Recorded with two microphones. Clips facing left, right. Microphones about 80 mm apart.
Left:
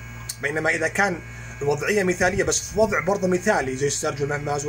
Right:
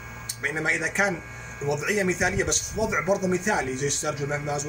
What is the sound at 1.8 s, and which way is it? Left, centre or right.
Speech, left.